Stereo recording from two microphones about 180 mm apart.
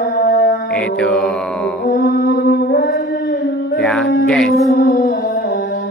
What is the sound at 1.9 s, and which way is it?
Mantra, 60° left (ahead or behind).